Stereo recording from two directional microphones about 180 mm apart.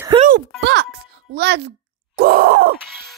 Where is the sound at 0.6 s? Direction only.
80° right.